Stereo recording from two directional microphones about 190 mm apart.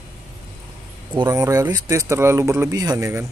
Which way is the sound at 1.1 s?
20° right (ahead or behind).